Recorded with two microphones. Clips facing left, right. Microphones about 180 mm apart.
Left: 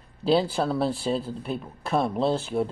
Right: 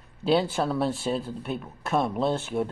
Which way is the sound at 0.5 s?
Centre (ahead or behind).